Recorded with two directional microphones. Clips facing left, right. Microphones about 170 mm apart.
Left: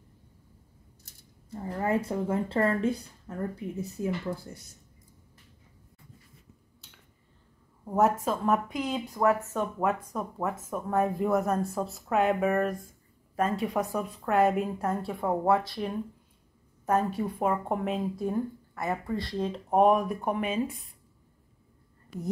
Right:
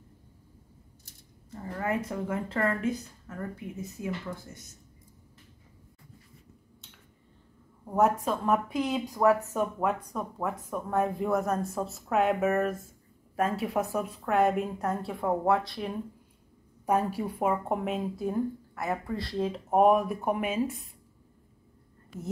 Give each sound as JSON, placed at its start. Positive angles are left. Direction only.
{"t": 1.8, "sound": "speech", "side_deg": 30}
{"t": 7.9, "sound": "speech", "side_deg": 0}
{"t": 8.8, "sound": "speech", "side_deg": -10}
{"t": 10.1, "sound": "speech", "side_deg": 0}